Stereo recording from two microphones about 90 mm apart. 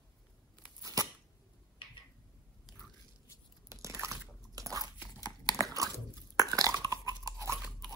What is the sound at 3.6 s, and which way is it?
Biting, 35° right (ahead or behind).